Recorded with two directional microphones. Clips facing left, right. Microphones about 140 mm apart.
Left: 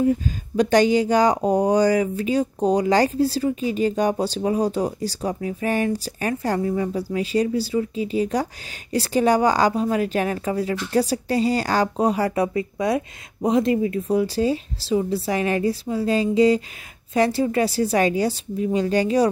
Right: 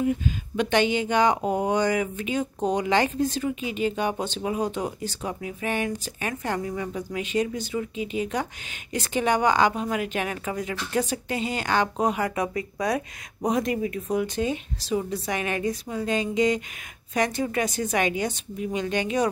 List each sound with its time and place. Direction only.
0.0 s a woman's voice: 35° left (ahead or behind)